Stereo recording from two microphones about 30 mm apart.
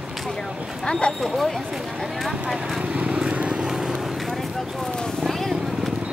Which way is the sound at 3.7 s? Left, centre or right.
Centre.